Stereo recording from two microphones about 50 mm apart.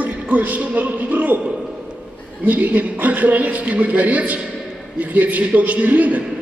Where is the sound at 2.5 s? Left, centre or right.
Right.